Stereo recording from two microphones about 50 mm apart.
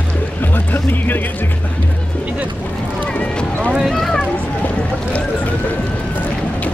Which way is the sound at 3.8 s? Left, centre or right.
Centre.